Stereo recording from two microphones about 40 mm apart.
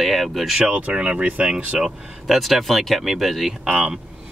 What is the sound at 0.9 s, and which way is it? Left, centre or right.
Speech, right.